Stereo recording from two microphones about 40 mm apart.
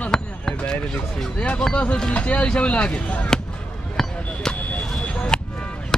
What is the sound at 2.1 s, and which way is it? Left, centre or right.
Speech, left.